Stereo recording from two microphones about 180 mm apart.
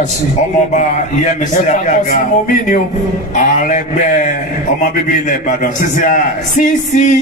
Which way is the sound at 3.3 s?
45° left (ahead or behind).